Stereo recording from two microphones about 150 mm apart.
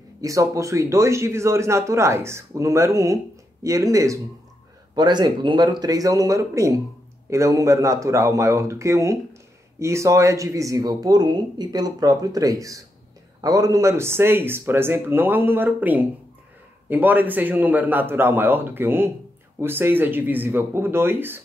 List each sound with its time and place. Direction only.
0.2 s speech: 20° right (ahead or behind)